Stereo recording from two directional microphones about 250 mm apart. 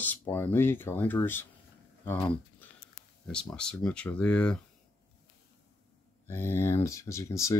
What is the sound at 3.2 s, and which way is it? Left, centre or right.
Speech, centre.